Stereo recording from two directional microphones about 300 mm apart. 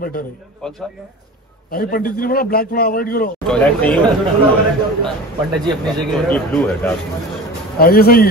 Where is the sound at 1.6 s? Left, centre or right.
Left.